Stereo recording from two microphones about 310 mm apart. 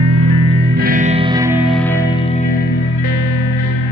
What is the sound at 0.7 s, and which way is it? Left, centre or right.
Music, right.